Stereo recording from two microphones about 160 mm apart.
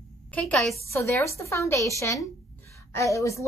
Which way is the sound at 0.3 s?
5° left (ahead or behind).